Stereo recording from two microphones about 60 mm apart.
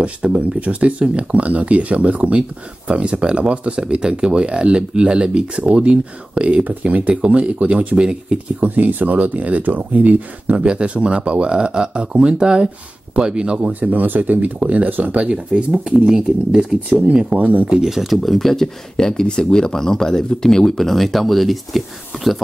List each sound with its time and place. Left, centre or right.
0.0 s speech: centre
8.6 s speech: right
15.2 s speech: centre